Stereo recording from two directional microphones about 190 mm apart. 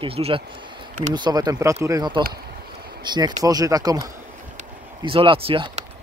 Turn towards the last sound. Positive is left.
turn(degrees=-30)  # may be behind; listen again after turning